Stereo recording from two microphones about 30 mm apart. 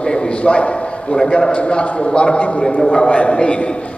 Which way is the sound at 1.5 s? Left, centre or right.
Left.